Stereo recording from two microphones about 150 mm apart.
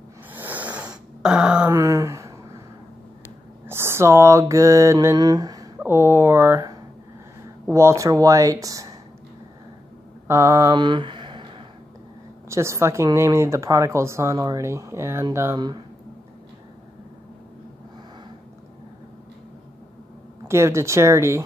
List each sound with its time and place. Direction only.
0.3 s a sound: 10° right (ahead or behind)
1.7 s a sound: 20° right (ahead or behind)
3.6 s mantra: 15° right (ahead or behind)
5.8 s speech: 15° right (ahead or behind)
7.7 s speech: 20° right (ahead or behind)
10.2 s speech: 20° right (ahead or behind)
12.4 s speech: 20° right (ahead or behind)
20.4 s speech: 20° right (ahead or behind)